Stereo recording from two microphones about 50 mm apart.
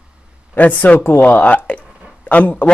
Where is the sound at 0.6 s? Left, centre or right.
Left.